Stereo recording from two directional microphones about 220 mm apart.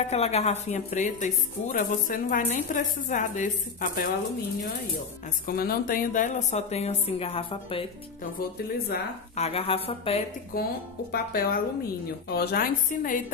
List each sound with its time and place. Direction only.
0.0 s speech: 30° left (ahead or behind)
5.5 s speech: 40° left (ahead or behind); by 7.8 s 25° left (ahead or behind)
9.4 s speech: 25° left (ahead or behind)
10.5 s a woman's voice: 40° left (ahead or behind)